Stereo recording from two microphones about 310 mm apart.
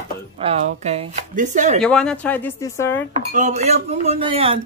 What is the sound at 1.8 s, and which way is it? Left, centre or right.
A woman's voice, centre.